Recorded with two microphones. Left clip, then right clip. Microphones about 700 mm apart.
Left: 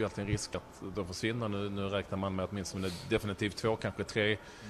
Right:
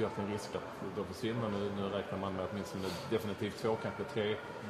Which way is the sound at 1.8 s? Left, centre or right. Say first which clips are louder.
Left 2 dB; left.